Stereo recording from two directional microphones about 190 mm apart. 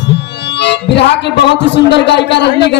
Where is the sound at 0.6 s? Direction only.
65° left (ahead or behind).